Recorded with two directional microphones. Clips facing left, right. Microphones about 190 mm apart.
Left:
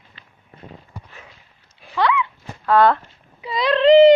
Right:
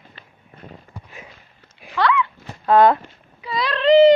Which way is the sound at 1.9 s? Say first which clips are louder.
Even; 15° left (ahead or behind).